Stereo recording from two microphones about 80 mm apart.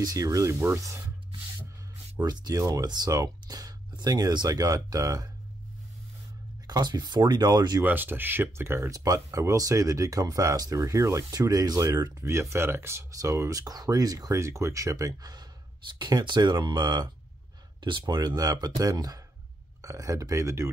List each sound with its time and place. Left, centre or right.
0.0 s speech: right
2.2 s speech: right
4.5 s speech: right
6.7 s speech: right
7.8 s speech: right
9.0 s speech: right
13.1 s speech: right
16.0 s speech: right
17.7 s speech: right